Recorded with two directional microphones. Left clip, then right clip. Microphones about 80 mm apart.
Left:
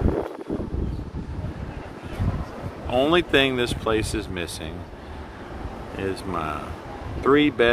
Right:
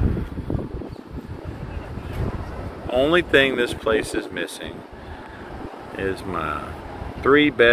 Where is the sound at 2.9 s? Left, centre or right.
Left.